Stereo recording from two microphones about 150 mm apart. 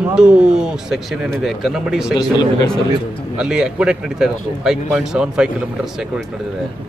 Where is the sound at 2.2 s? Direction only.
30° left (ahead or behind).